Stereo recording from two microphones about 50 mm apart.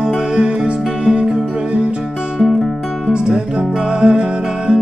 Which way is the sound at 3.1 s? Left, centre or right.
Centre.